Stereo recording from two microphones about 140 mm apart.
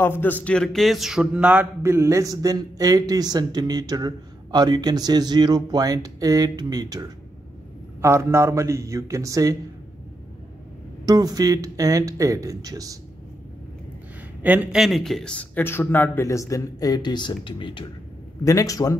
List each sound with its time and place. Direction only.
0.0 s speech: 15° left (ahead or behind); by 9.6 s 25° right (ahead or behind)
11.1 s speech: 25° right (ahead or behind)
14.4 s speech: 10° right (ahead or behind); by 17.8 s 35° left (ahead or behind)
18.4 s a man's voice: 25° left (ahead or behind)